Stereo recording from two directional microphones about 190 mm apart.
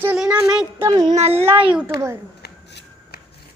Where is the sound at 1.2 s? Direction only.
35° right (ahead or behind).